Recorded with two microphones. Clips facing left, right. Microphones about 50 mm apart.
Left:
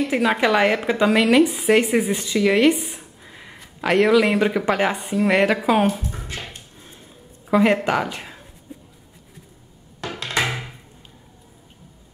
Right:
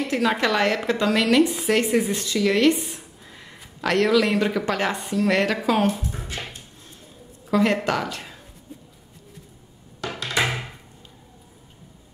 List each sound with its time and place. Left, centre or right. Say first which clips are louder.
0.0 s a woman's voice: left 3 dB; centre
7.4 s a woman's voice: left 3 dB; centre